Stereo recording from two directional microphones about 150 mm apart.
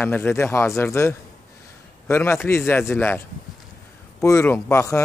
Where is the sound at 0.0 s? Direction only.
15° left (ahead or behind).